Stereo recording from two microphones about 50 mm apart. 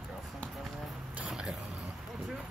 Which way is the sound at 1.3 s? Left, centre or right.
Centre.